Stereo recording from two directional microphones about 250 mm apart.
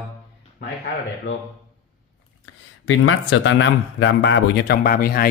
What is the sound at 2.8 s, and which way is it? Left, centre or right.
Speech, left.